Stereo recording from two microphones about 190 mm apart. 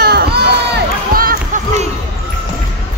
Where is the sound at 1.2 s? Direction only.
45° right (ahead or behind).